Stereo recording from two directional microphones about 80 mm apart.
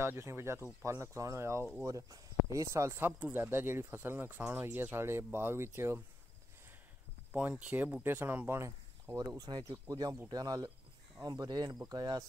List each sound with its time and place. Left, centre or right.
0.0 s speech: right
7.3 s speech: centre
8.5 s speech: right
9.4 s speech: right
9.7 s speech: right